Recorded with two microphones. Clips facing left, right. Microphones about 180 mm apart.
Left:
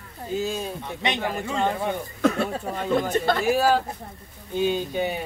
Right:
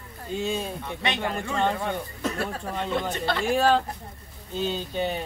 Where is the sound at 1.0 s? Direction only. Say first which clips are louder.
Left 2 dB; 15° left (ahead or behind).